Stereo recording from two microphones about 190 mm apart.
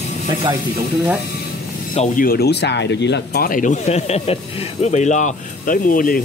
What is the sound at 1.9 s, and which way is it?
Speech, 40° left (ahead or behind).